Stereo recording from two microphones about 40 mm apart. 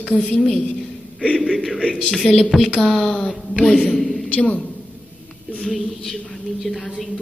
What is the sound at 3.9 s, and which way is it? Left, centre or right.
Speech, centre.